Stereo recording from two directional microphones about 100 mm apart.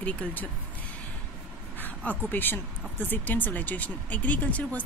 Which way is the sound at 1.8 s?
20° left (ahead or behind).